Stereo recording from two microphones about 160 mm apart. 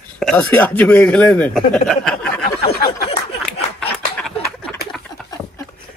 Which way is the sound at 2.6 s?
80° left.